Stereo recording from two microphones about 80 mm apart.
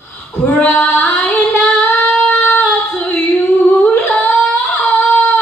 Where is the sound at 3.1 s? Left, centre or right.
Centre.